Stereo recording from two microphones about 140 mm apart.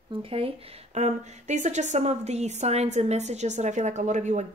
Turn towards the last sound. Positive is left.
turn(degrees=-60)  # may be behind; listen again after turning